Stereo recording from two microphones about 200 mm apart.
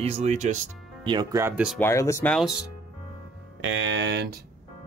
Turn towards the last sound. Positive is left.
turn(degrees=-60)  # may be behind; listen again after turning